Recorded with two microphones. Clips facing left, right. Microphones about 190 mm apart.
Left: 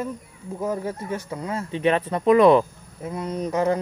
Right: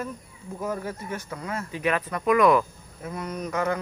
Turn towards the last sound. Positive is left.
turn(degrees=30)  # may be behind; listen again after turning